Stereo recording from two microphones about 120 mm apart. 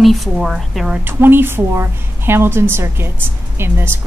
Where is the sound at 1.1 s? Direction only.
20° right (ahead or behind).